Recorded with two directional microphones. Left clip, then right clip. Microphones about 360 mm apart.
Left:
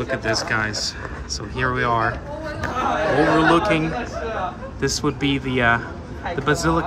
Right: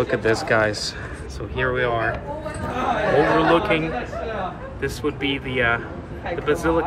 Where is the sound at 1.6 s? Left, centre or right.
Centre.